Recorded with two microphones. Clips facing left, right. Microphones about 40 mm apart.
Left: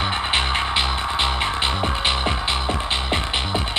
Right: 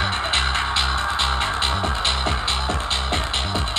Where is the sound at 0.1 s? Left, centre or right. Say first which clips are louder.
Left 1 dB; centre.